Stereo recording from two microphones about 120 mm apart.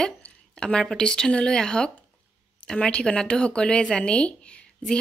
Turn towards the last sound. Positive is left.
turn(degrees=10)  # may be behind; listen again after turning